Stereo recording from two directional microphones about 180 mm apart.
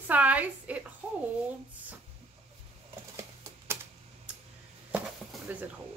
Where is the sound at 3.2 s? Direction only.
15° right (ahead or behind).